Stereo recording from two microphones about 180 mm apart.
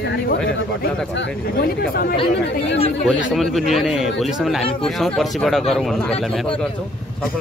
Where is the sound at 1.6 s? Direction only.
60° left (ahead or behind).